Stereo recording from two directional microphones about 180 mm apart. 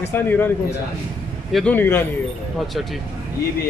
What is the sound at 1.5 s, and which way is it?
Speech, centre (ahead or behind).